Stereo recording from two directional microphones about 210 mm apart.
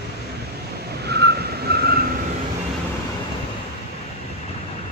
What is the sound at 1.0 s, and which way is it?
Vehicle, 50° right (ahead or behind).